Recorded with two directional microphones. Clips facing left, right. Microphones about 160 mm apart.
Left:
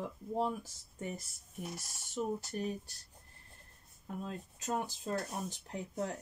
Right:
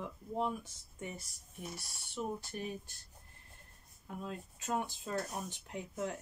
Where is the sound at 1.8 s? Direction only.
45° left (ahead or behind).